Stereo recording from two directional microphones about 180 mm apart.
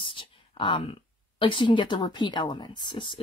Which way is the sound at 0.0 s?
30° left (ahead or behind).